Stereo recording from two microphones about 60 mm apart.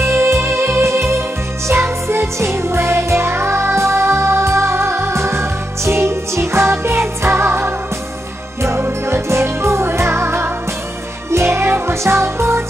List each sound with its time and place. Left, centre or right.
0.0 s music: right